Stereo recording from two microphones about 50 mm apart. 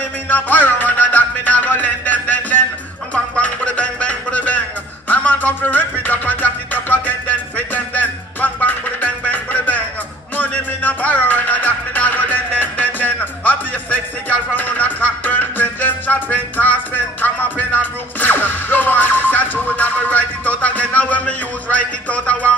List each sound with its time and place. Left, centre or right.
0.3 s music: left